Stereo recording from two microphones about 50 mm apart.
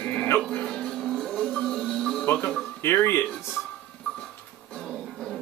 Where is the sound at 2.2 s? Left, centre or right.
Left.